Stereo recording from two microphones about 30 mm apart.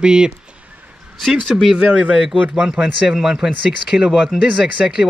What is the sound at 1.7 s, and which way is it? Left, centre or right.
Speech, right.